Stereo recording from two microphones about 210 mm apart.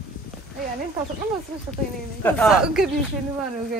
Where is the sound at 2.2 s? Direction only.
5° left (ahead or behind).